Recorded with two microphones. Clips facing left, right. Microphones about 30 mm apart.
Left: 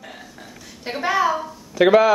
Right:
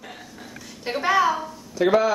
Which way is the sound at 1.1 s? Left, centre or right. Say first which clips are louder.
Even; centre.